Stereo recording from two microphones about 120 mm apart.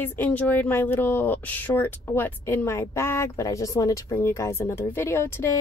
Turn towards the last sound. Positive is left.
turn(degrees=20)  # may be behind; listen again after turning